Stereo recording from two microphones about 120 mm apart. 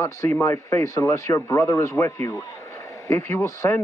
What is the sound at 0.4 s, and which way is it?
Speech, 25° left (ahead or behind).